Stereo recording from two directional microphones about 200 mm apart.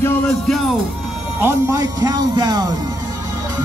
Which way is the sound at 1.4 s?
15° right (ahead or behind).